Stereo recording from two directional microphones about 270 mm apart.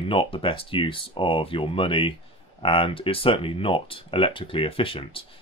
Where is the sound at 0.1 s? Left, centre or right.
Centre.